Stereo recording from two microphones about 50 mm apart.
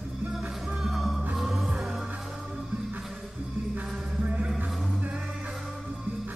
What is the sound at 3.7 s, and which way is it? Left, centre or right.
Music, right.